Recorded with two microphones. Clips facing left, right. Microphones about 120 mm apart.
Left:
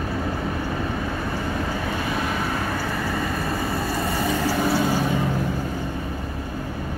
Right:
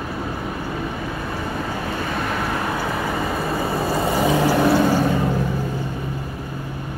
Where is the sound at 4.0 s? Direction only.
90° right; by 4.9 s 60° right (ahead or behind).